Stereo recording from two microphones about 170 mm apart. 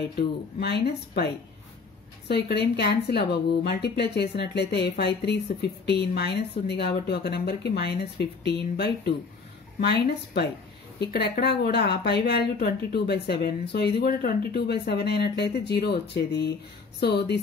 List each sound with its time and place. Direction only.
0.6 s speech: 75° left (ahead or behind)